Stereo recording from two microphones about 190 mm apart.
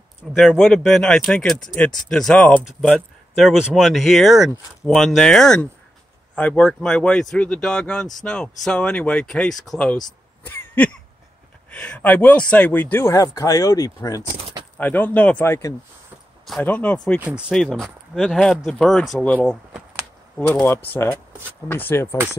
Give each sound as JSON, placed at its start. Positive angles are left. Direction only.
{"t": 0.3, "sound": "speech", "side_deg": 0}
{"t": 14.4, "sound": "a sound", "side_deg": -25}
{"t": 14.8, "sound": "speech", "side_deg": 10}
{"t": 17.2, "sound": "speech", "side_deg": -10}
{"t": 17.5, "sound": "speech", "side_deg": 0}
{"t": 19.5, "sound": "a sound", "side_deg": -10}
{"t": 20.3, "sound": "speech", "side_deg": 10}